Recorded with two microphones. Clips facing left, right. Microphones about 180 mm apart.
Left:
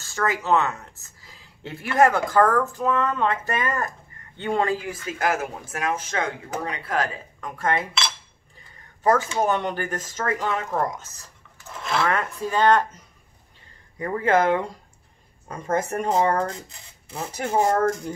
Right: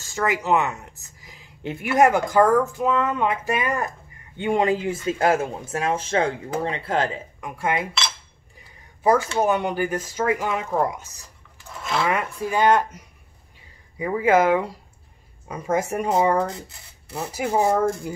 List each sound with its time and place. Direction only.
0.0 s speech: 15° right (ahead or behind)
7.3 s speech: 10° right (ahead or behind)
9.4 s speech: 10° right (ahead or behind)
11.8 s speech: centre (ahead or behind)